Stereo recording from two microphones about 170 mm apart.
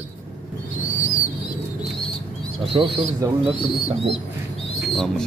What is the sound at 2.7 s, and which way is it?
Speech, 30° right (ahead or behind).